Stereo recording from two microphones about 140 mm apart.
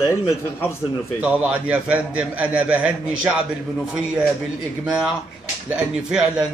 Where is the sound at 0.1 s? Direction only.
20° left (ahead or behind).